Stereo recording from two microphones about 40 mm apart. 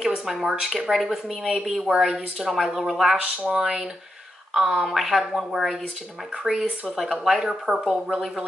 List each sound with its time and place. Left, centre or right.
0.0 s a woman's voice: centre
3.4 s speech: right
4.6 s a woman's voice: centre